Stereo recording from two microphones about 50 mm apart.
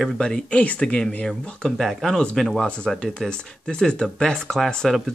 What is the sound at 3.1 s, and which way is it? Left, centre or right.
Speech, centre.